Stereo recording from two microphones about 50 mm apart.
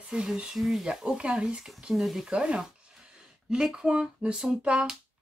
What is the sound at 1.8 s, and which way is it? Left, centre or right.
Speech, centre.